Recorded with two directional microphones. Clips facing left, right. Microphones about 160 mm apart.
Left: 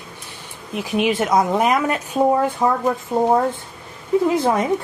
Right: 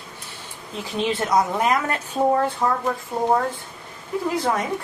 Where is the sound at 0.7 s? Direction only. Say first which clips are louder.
Left 5 dB; 15° left (ahead or behind).